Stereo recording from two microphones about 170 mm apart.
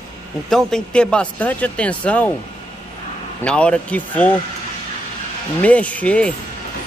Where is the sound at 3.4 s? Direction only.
5° left (ahead or behind).